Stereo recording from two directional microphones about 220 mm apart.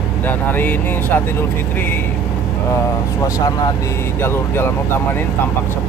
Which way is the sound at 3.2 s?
15° left (ahead or behind).